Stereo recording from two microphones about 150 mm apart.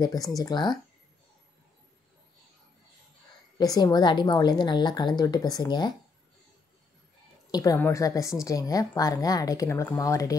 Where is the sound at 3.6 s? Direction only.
25° left (ahead or behind).